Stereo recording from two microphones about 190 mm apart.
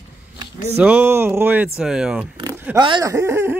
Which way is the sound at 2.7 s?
25° right (ahead or behind).